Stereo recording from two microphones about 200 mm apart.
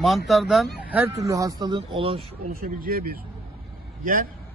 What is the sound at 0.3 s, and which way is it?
Speech, centre (ahead or behind).